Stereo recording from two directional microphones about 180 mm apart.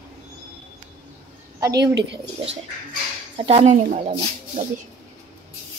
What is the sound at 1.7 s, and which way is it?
Speech, 70° right (ahead or behind).